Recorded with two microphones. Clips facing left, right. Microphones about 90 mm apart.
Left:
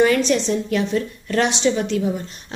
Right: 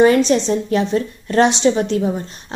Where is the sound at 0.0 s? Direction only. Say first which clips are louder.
Right 4 dB; 30° right (ahead or behind).